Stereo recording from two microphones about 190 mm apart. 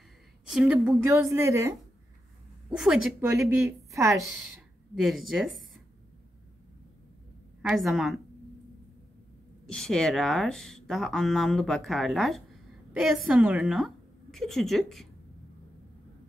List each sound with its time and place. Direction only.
0.5 s a woman's voice: 5° right (ahead or behind)
2.7 s speech: 5° right (ahead or behind)
3.3 s a woman's voice: 15° right (ahead or behind)
4.9 s speech: centre (ahead or behind)
7.6 s speech: centre (ahead or behind)
9.7 s speech: centre (ahead or behind)